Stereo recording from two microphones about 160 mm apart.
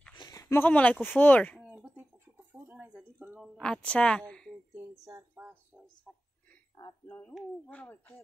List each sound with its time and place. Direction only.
0.2 s a sound: 20° left (ahead or behind)
1.0 s speech: 10° left (ahead or behind)
1.7 s bird: 10° right (ahead or behind)
3.5 s a woman's voice: 5° left (ahead or behind)
5.0 s speech: 15° right (ahead or behind)
6.8 s speech: 15° left (ahead or behind)